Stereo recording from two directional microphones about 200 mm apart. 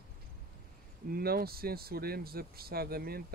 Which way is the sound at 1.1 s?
50° right (ahead or behind).